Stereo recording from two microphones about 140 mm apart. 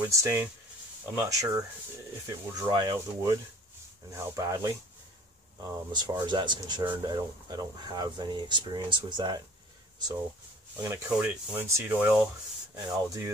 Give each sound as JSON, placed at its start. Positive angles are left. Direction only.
{"t": 0.0, "sound": "speech", "side_deg": -20}
{"t": 10.8, "sound": "speech", "side_deg": -15}